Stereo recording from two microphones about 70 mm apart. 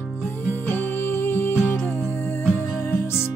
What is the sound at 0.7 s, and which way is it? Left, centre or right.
Music, left.